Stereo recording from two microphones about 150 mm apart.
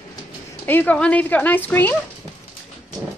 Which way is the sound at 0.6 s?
15° left (ahead or behind).